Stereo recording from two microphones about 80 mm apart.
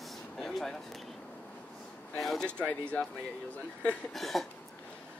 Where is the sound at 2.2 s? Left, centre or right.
Centre.